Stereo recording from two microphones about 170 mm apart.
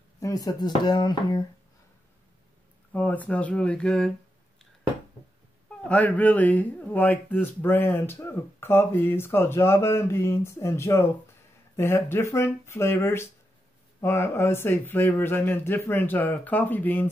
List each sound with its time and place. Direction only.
0.2 s speech: 20° left (ahead or behind)
2.9 s a man's voice: 10° left (ahead or behind)
5.9 s a man's voice: 10° left (ahead or behind)